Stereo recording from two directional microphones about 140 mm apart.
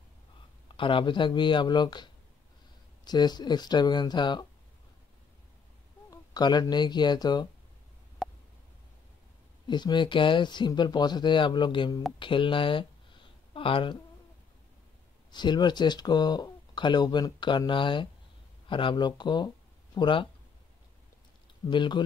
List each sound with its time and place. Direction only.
0.7 s speech: 35° left (ahead or behind)
3.1 s speech: 30° left (ahead or behind)
6.0 s speech: 30° left (ahead or behind)
8.2 s a sound: centre (ahead or behind)
9.7 s speech: 35° left (ahead or behind)
15.3 s speech: 30° left (ahead or behind)
21.6 s speech: 35° left (ahead or behind)